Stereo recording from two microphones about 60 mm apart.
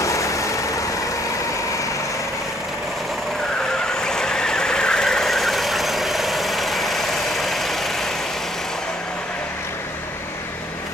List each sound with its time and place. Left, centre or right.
0.0 s vehicle: left
3.9 s vehicle: centre